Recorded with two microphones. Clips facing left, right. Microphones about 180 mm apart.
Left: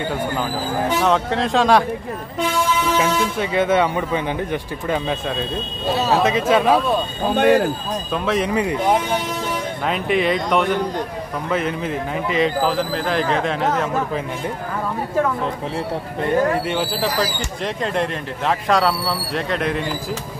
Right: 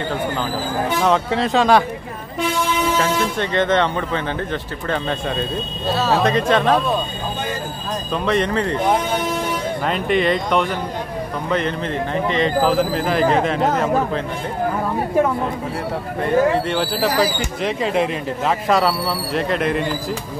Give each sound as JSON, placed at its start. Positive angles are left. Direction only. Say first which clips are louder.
{"t": 1.0, "sound": "speech", "louder": "right 3 dB", "side_deg": 0}
{"t": 3.0, "sound": "speech", "louder": "even", "side_deg": 10}
{"t": 6.1, "sound": "speech", "louder": "even", "side_deg": 5}
{"t": 7.3, "sound": "speech", "louder": "left 15 dB", "side_deg": 70}
{"t": 8.1, "sound": "speech", "louder": "right 1 dB", "side_deg": 5}
{"t": 9.8, "sound": "speech", "louder": "right 1 dB", "side_deg": 0}
{"t": 16.6, "sound": "speech", "louder": "right 2 dB", "side_deg": 0}